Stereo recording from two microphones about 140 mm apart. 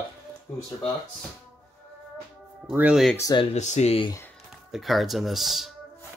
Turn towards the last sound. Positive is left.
turn(degrees=0)  # may be behind; listen again after turning